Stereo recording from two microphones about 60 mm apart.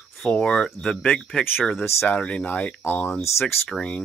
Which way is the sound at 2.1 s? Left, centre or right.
Centre.